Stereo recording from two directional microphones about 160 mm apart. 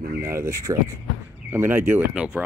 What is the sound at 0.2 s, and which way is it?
Speech, 15° right (ahead or behind).